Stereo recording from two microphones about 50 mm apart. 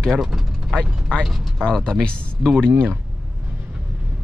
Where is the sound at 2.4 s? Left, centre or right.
Right.